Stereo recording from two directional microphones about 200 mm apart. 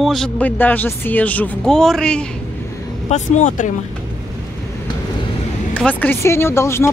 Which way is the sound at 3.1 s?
40° left (ahead or behind).